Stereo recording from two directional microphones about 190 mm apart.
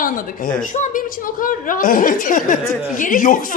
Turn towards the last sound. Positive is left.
turn(degrees=45)  # may be behind; listen again after turning